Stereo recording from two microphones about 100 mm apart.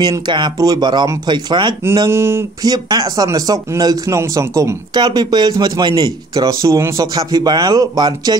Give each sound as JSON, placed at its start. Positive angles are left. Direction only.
{"t": 0.6, "sound": "speech", "side_deg": -40}
{"t": 2.0, "sound": "a sound", "side_deg": -25}
{"t": 2.6, "sound": "speech", "side_deg": -40}
{"t": 5.0, "sound": "speech", "side_deg": -45}